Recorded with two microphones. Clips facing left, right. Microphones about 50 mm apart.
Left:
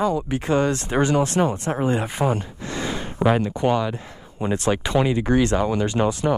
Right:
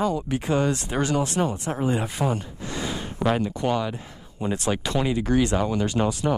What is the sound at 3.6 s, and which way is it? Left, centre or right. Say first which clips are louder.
Speech: left 4 dB; centre.